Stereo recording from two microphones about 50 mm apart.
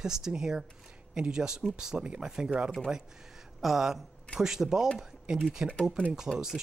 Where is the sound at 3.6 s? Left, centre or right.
Centre.